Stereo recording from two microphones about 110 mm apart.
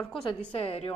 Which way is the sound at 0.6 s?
65° left (ahead or behind).